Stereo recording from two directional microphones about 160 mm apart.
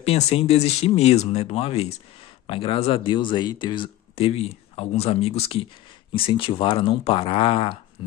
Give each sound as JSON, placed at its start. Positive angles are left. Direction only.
{"t": 0.0, "sound": "speech", "side_deg": 35}